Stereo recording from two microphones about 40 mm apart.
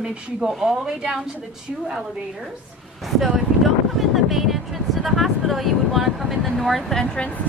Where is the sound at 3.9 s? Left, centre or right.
Centre.